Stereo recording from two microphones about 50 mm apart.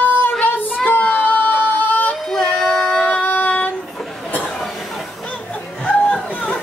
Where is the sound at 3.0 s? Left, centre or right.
Left.